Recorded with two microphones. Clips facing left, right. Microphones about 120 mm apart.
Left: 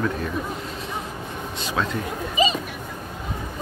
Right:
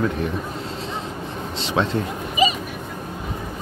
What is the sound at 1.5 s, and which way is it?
Speech, 25° right (ahead or behind).